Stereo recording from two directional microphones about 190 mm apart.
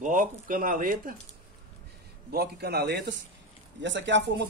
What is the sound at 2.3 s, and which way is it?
Speech, 55° right (ahead or behind).